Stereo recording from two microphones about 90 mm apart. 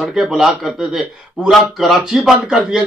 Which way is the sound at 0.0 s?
5° right (ahead or behind).